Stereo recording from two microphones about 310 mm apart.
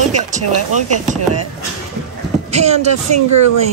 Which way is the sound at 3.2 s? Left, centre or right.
Right.